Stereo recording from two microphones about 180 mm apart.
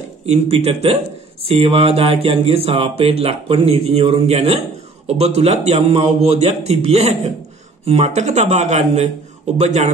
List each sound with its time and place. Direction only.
0.3 s speech: 35° right (ahead or behind)